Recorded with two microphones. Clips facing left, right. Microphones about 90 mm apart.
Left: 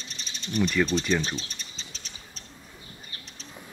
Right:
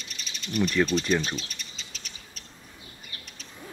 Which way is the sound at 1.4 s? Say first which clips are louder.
Even; 35° left (ahead or behind).